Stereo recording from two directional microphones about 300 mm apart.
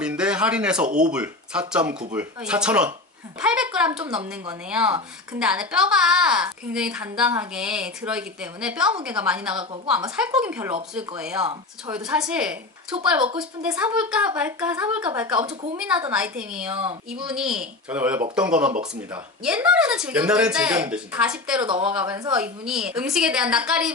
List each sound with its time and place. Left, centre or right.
0.0 s a sound: centre
1.1 s a woman's voice: centre
21.6 s a woman's voice: centre